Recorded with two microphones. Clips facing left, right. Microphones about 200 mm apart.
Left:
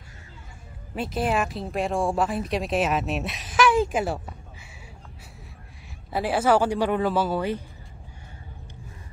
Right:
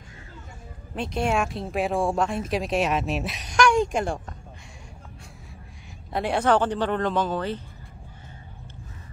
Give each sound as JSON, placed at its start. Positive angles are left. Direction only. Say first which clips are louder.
{"t": 0.9, "sound": "speech", "louder": "even", "side_deg": 5}
{"t": 6.1, "sound": "speech", "louder": "left 1 dB", "side_deg": 5}